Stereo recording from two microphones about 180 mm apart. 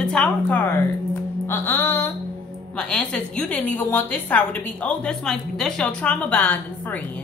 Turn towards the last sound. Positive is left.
turn(degrees=10)  # may be behind; listen again after turning